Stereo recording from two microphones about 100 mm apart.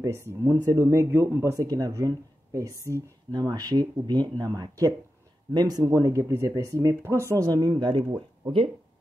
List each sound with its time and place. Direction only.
0.0 s speech: 30° right (ahead or behind)
7.9 s speech: 50° right (ahead or behind)